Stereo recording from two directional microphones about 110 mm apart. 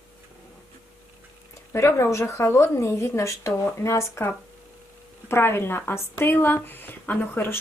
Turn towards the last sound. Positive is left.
turn(degrees=20)  # may be behind; listen again after turning